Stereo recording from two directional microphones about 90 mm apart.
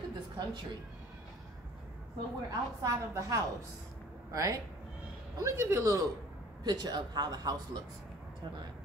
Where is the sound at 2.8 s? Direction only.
35° right (ahead or behind).